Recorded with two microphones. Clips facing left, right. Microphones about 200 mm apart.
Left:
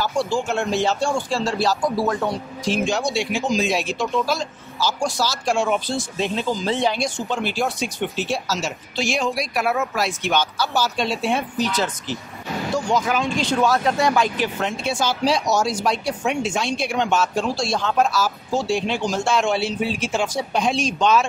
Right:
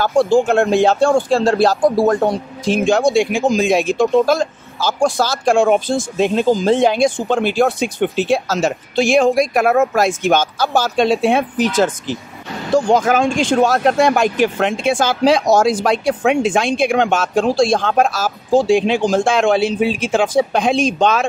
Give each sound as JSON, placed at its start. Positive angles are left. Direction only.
{"t": 0.0, "sound": "speech", "side_deg": -55}
{"t": 12.7, "sound": "speech", "side_deg": -50}
{"t": 14.6, "sound": "speech", "side_deg": -90}
{"t": 15.0, "sound": "speech", "side_deg": -55}
{"t": 16.2, "sound": "speech", "side_deg": -90}
{"t": 16.7, "sound": "speech", "side_deg": -55}
{"t": 18.7, "sound": "speech", "side_deg": -90}
{"t": 19.0, "sound": "speech", "side_deg": -55}
{"t": 20.0, "sound": "speech", "side_deg": -90}
{"t": 20.5, "sound": "speech", "side_deg": -55}